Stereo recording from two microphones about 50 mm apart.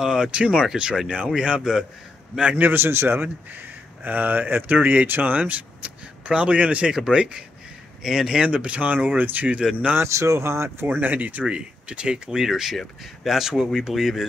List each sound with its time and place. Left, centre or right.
0.0 s speech: centre
2.5 s a man's voice: right
4.0 s speech: right; by 7.4 s centre
8.0 s speech: centre
8.4 s speech: right
8.9 s speech: right
9.6 s speech: centre
10.0 s speech: right
10.9 s speech: right
11.4 s speech: right